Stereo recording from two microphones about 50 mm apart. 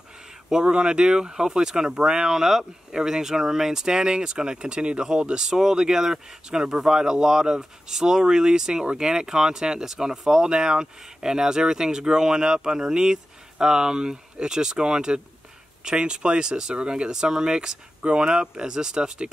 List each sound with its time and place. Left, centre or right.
0.5 s speech: centre